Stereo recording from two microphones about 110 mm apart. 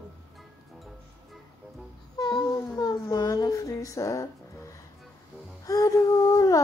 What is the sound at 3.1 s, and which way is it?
Music, 30° left (ahead or behind).